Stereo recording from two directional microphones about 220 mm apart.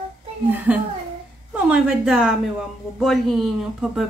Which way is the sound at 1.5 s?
5° right (ahead or behind).